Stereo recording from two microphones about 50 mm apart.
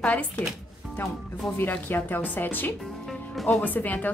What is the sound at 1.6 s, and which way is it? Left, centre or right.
A woman's voice, left.